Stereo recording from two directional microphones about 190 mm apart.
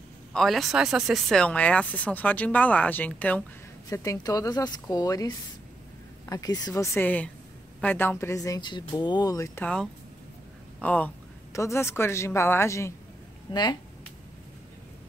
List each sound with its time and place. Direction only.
0.3 s speech: centre (ahead or behind); by 9.7 s 15° left (ahead or behind)
10.8 s speech: 5° left (ahead or behind); by 13.7 s 20° left (ahead or behind)